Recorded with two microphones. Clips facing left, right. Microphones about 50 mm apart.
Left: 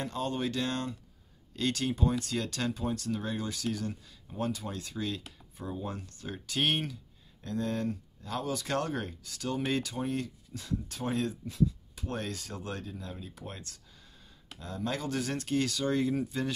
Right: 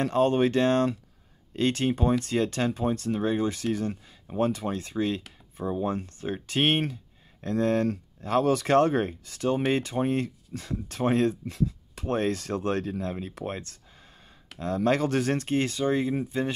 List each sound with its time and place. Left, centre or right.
0.0 s speech: right
7.4 s speech: right
14.6 s speech: right